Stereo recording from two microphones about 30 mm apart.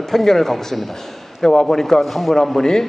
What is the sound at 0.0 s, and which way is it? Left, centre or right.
A man's voice, centre.